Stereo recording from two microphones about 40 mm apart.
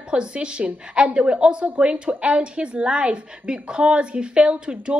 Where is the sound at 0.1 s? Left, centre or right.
Right.